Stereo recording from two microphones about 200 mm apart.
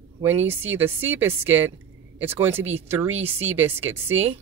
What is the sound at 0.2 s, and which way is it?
A woman's voice, 10° right (ahead or behind).